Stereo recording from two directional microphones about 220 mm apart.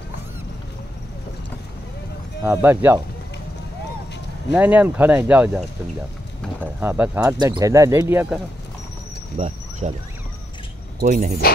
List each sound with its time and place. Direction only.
2.4 s speech: 10° right (ahead or behind)
4.5 s speech: 5° right (ahead or behind)
6.6 s speech: 10° right (ahead or behind)
9.4 s speech: 30° right (ahead or behind)
11.0 s speech: 30° right (ahead or behind)